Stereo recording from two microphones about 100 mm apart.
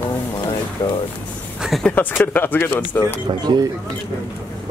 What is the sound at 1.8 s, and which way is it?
Speech, 20° left (ahead or behind).